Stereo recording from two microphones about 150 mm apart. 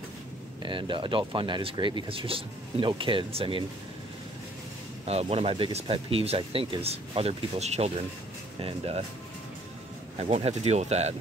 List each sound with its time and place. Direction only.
0.6 s speech: 30° right (ahead or behind)
5.0 s speech: 45° right (ahead or behind)
10.2 s speech: 45° right (ahead or behind)